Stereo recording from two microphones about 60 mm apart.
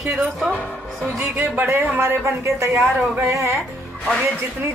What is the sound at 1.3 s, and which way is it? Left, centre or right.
A woman's voice, right.